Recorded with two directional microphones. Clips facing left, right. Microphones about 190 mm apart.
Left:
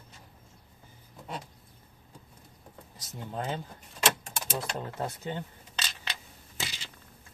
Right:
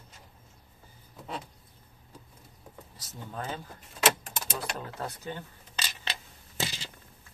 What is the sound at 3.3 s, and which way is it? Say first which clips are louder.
Speech: left 3 dB; 25° left (ahead or behind).